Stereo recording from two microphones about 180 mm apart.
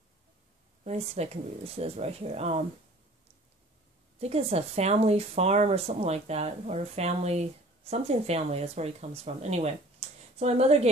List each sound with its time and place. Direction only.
0.8 s speech: 35° right (ahead or behind)
4.2 s speech: 35° right (ahead or behind)